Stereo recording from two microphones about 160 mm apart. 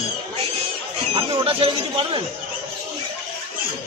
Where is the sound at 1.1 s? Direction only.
35° right (ahead or behind).